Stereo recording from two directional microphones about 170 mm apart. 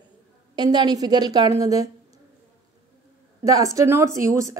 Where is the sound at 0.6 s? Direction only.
25° right (ahead or behind).